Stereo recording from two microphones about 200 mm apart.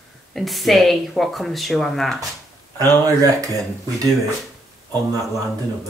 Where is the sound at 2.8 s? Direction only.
15° right (ahead or behind).